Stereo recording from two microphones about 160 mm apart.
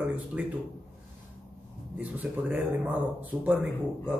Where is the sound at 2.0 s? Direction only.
10° right (ahead or behind).